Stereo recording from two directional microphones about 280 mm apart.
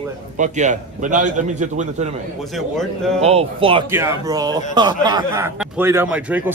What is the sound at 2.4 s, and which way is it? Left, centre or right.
Speech, centre.